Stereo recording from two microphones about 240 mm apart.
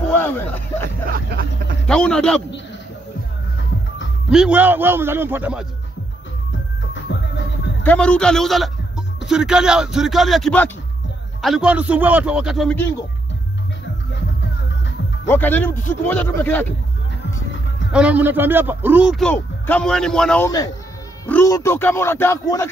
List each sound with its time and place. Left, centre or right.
0.1 s hubbub: centre
1.1 s vehicle: right
1.9 s speech: centre
4.3 s a man's voice: centre
6.9 s music: left
7.8 s a man's voice: centre
15.2 s speech: centre
17.9 s speech: centre